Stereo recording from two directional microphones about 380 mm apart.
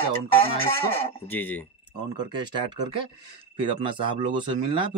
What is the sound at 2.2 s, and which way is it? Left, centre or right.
Speech, centre.